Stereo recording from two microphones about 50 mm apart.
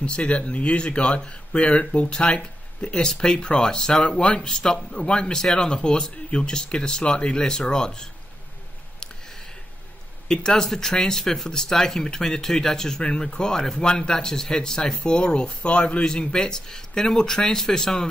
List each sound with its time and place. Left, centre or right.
0.0 s speech: left
10.2 s speech: centre